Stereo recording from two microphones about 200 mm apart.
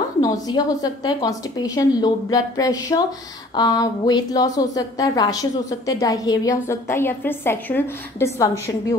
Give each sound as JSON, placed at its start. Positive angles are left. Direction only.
{"t": 0.2, "sound": "a woman's voice", "side_deg": 20}